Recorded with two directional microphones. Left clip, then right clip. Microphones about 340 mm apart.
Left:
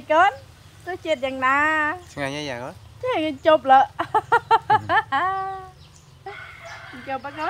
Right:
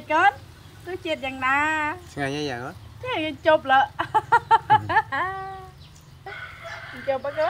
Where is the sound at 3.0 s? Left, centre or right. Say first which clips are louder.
Left 3 dB; centre.